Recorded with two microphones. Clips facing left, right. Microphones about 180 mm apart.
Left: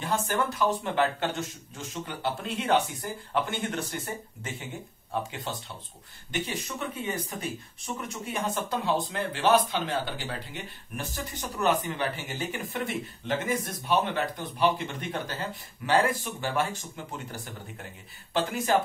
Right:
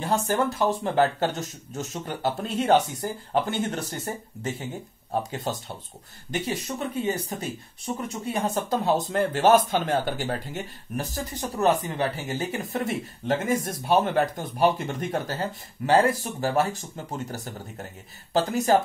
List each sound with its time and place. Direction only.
0.8 s speech: 40° right (ahead or behind)